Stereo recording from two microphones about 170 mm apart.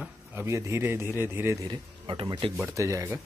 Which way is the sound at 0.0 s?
10° right (ahead or behind).